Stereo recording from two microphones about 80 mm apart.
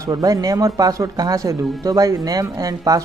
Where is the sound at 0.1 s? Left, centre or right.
Right.